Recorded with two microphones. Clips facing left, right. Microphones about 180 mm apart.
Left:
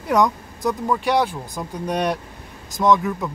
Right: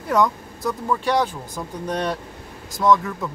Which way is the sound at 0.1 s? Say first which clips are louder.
Left 1 dB; 15° left (ahead or behind).